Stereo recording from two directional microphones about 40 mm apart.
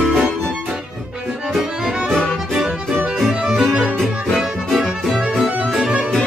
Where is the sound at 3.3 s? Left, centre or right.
Centre.